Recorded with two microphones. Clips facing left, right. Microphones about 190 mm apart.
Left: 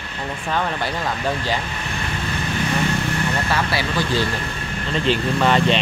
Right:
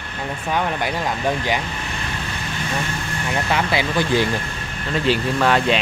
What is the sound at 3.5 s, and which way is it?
Speech, 20° right (ahead or behind).